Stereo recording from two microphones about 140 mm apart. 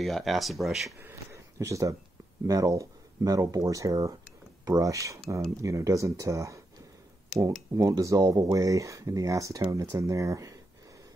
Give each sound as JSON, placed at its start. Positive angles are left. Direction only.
{"t": 0.0, "sound": "speech", "side_deg": 0}
{"t": 1.0, "sound": "speech", "side_deg": -20}
{"t": 7.7, "sound": "speech", "side_deg": -25}